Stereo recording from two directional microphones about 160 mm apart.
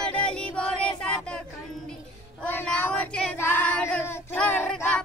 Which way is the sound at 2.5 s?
10° left (ahead or behind).